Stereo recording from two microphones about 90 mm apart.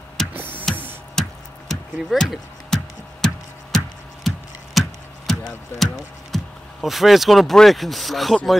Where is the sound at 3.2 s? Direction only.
5° left (ahead or behind).